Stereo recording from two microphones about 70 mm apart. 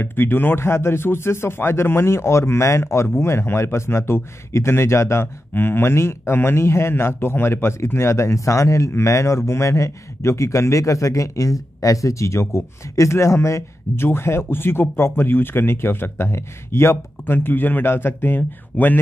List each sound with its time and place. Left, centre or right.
0.0 s speech: left